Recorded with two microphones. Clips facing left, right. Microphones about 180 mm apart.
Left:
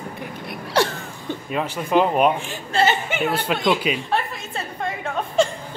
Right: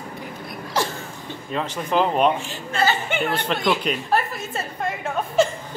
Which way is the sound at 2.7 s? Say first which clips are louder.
Left 2 dB; 25° left (ahead or behind).